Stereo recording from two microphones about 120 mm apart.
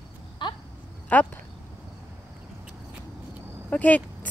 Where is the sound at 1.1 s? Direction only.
15° left (ahead or behind).